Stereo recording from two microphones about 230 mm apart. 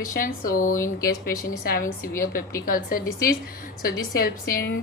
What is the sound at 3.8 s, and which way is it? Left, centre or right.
Speech, left.